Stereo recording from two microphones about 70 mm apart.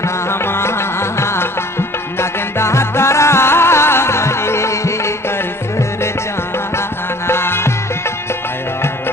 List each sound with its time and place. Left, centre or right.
0.0 s music: left
7.2 s music: left